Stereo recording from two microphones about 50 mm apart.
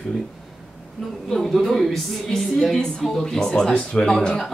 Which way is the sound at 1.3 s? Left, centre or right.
Centre.